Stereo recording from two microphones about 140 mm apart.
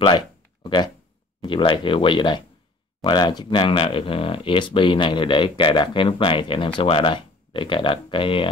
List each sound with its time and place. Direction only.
1.4 s speech: 35° left (ahead or behind)